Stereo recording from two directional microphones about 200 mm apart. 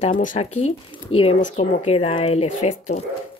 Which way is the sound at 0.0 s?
40° left (ahead or behind).